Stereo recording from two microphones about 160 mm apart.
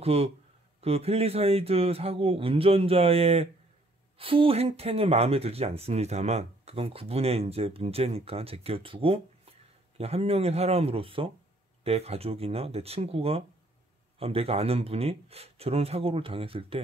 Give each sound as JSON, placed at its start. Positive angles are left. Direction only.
{"t": 0.0, "sound": "speech", "side_deg": -40}